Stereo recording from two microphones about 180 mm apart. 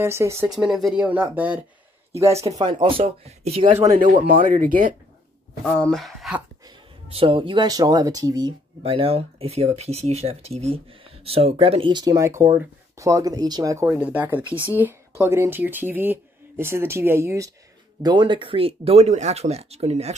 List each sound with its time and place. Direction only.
0.0 s speech: 15° right (ahead or behind)
0.5 s speech: centre (ahead or behind); by 3.7 s 35° right (ahead or behind)
3.9 s speech: 45° right (ahead or behind)
5.8 s speech: 5° left (ahead or behind)
7.1 s speech: 30° right (ahead or behind); by 17.5 s 15° right (ahead or behind)
18.0 s speech: 25° right (ahead or behind)